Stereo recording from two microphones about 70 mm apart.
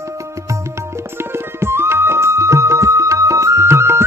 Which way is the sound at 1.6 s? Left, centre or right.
Right.